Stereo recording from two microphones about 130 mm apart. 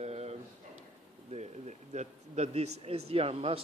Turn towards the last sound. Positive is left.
turn(degrees=-45)  # may be behind; listen again after turning